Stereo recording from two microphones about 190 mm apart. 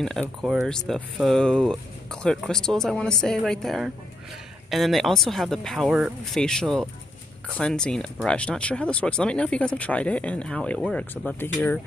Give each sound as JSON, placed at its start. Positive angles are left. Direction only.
{"t": 0.0, "sound": "speech", "side_deg": 5}